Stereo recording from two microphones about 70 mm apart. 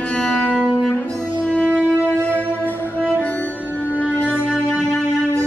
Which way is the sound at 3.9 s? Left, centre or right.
Left.